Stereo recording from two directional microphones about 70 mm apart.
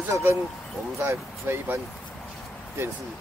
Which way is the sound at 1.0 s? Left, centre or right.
Right.